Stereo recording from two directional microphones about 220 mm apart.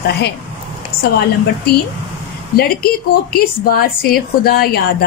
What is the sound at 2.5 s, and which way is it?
A woman's voice, 45° left (ahead or behind).